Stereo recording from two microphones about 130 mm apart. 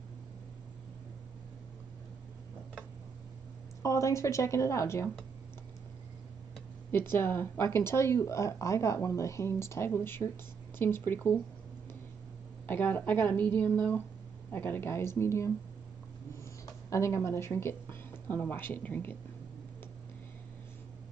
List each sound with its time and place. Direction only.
3.8 s speech: 25° left (ahead or behind)
6.9 s speech: 15° left (ahead or behind)
12.6 s speech: 15° left (ahead or behind)
16.6 s speech: 25° left (ahead or behind)